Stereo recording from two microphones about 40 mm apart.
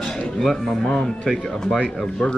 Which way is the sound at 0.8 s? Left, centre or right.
Centre.